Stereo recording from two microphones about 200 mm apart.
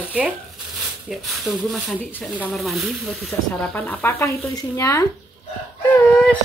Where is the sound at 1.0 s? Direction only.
Centre (ahead or behind); by 5.0 s 15° left (ahead or behind).